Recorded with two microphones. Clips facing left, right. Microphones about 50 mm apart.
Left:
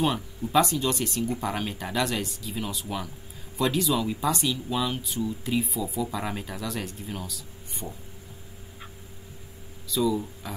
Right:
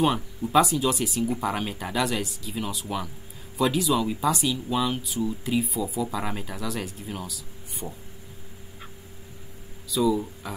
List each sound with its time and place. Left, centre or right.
0.0 s speech: centre
9.8 s speech: centre